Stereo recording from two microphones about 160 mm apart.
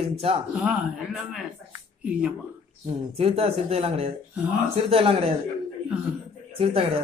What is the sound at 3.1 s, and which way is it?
A man's voice, 40° right (ahead or behind).